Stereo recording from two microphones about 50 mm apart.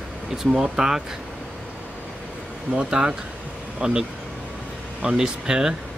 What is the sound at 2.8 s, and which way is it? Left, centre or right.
Speech, centre.